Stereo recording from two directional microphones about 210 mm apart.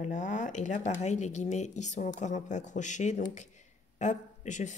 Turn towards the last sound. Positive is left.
turn(degrees=35)  # may be behind; listen again after turning